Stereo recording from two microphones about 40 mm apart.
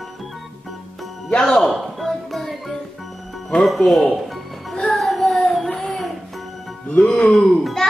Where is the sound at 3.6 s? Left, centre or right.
Centre.